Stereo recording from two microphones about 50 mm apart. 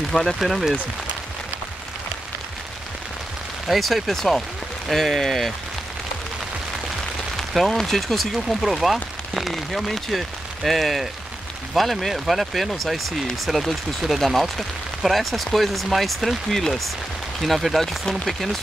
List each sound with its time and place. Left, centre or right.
0.1 s speech: centre
0.4 s speech: centre
3.6 s speech: centre
7.3 s speech: centre